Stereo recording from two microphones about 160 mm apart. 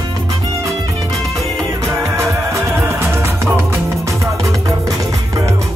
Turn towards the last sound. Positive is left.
turn(degrees=-20)  # may be behind; listen again after turning